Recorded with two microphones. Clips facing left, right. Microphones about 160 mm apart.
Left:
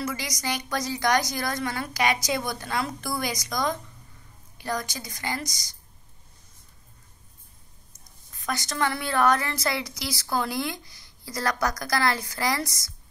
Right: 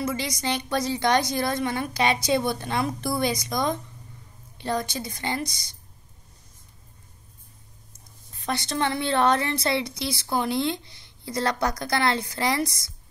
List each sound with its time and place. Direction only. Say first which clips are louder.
0.0 s a woman's voice: right 3 dB; 25° right (ahead or behind)
8.3 s a woman's voice: right 3 dB; 25° right (ahead or behind)